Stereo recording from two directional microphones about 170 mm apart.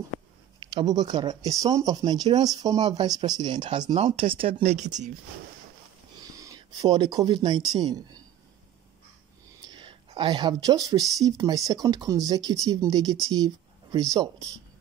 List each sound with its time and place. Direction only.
0.6 s speech: 25° right (ahead or behind)
3.9 s speech: 35° right (ahead or behind)
6.2 s speech: 20° right (ahead or behind)
9.7 s speech: 25° right (ahead or behind)